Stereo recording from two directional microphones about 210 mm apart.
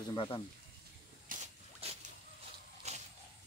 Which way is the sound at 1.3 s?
30° right (ahead or behind).